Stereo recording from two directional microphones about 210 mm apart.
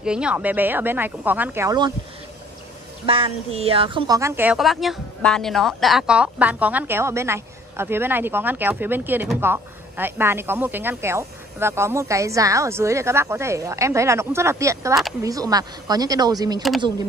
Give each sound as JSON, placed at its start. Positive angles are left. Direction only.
{"t": 0.0, "sound": "a woman's voice", "side_deg": -5}
{"t": 3.1, "sound": "a woman's voice", "side_deg": -25}